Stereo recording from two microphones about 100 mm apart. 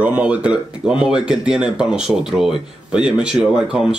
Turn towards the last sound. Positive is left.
turn(degrees=-5)  # may be behind; listen again after turning